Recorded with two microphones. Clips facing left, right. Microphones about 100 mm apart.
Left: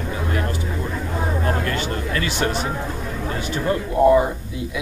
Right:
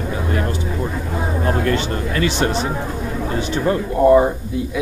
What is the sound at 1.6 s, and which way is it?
Speech, 30° right (ahead or behind).